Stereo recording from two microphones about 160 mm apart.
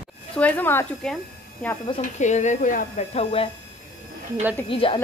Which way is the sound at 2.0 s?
50° left (ahead or behind).